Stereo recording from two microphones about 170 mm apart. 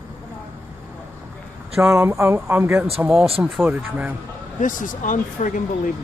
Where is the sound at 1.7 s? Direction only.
15° right (ahead or behind).